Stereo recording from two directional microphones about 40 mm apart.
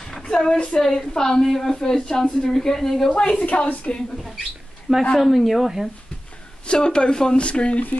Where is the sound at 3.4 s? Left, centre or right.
Left.